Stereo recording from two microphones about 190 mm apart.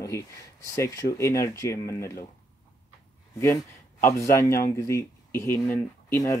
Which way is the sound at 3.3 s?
15° left (ahead or behind).